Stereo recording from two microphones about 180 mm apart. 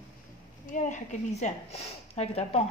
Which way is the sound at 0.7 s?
40° left (ahead or behind).